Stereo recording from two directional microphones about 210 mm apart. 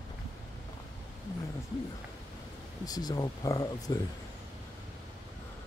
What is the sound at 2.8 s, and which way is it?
Speech, 20° left (ahead or behind).